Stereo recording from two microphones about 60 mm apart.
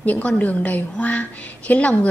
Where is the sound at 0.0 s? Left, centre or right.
Left.